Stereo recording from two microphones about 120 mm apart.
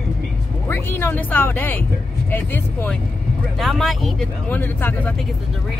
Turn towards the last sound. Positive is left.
turn(degrees=15)  # may be behind; listen again after turning